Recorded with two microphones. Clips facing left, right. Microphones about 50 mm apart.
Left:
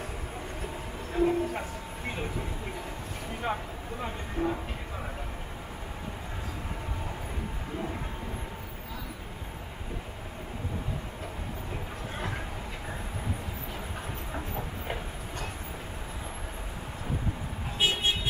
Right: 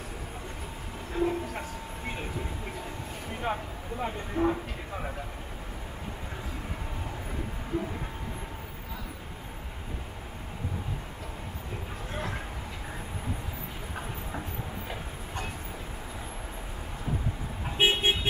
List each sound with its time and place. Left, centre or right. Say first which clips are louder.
1.1 s train: left 3 dB; centre
3.5 s speech: right 1 dB; centre
17.7 s vehicle: right 3 dB; right